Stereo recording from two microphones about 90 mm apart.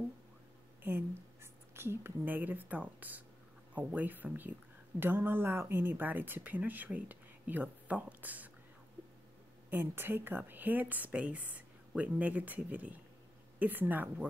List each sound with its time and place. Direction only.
0.8 s a woman's voice: 25° right (ahead or behind)
9.7 s speech: 25° right (ahead or behind)